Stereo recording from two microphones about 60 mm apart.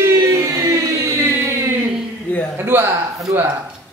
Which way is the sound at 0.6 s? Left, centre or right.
Right.